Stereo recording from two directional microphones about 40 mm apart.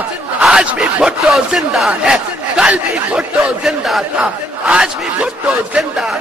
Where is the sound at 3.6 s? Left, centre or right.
Centre.